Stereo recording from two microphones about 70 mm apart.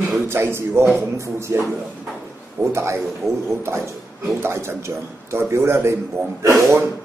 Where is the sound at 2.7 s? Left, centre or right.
Right.